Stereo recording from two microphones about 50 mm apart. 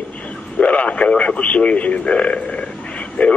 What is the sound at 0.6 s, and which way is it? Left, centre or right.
Speech, left.